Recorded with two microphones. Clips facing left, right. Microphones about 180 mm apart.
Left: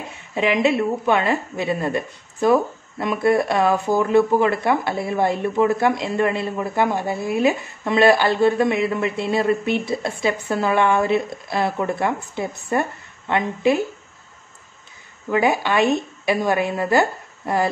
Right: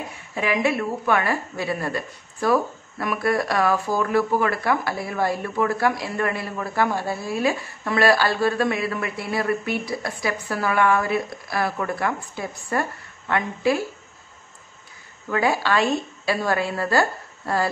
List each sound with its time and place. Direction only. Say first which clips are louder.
0.1 s a woman's voice: left 5 dB; 20° left (ahead or behind)
15.2 s a woman's voice: left 3 dB; 20° left (ahead or behind)